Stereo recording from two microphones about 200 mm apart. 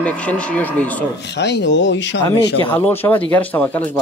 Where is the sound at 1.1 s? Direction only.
60° left (ahead or behind).